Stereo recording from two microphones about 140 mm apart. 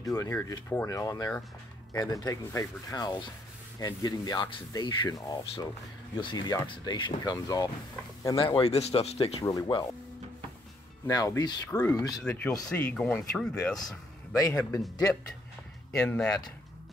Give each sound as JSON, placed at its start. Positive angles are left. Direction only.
{"t": 0.0, "sound": "speech", "side_deg": 20}
{"t": 8.5, "sound": "speech", "side_deg": 50}
{"t": 9.4, "sound": "speech", "side_deg": 25}
{"t": 11.1, "sound": "speech", "side_deg": 25}
{"t": 12.2, "sound": "speech", "side_deg": 5}
{"t": 14.3, "sound": "speech", "side_deg": 25}
{"t": 14.8, "sound": "speech", "side_deg": 5}